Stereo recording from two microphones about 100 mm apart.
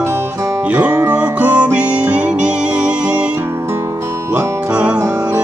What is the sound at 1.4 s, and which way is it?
Music, 15° right (ahead or behind).